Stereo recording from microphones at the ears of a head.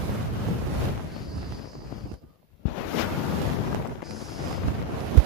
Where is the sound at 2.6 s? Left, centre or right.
Left.